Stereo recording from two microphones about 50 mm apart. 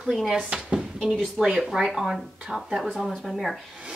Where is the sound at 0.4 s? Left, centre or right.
Right.